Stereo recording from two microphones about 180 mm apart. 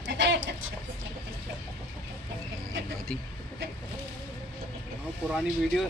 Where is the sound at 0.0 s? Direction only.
80° right.